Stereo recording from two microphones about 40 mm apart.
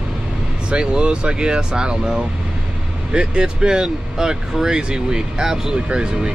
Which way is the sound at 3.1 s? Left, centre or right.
Right.